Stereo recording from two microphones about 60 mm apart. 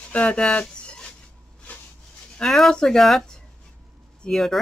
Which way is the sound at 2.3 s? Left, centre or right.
Centre.